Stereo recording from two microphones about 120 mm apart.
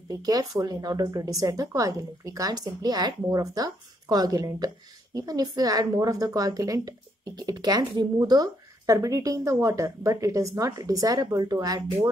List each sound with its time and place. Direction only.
0.1 s a woman's voice: 30° right (ahead or behind)